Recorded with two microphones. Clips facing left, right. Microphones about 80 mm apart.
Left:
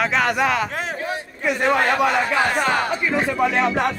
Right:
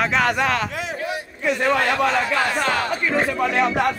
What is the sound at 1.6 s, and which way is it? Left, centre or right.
A man's voice, left.